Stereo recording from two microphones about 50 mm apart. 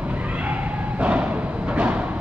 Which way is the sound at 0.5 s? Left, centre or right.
Right.